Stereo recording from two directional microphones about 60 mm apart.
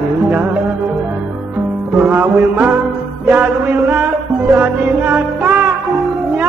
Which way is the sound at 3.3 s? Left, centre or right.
Right.